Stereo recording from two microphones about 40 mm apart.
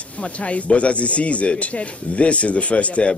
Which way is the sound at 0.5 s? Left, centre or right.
Left.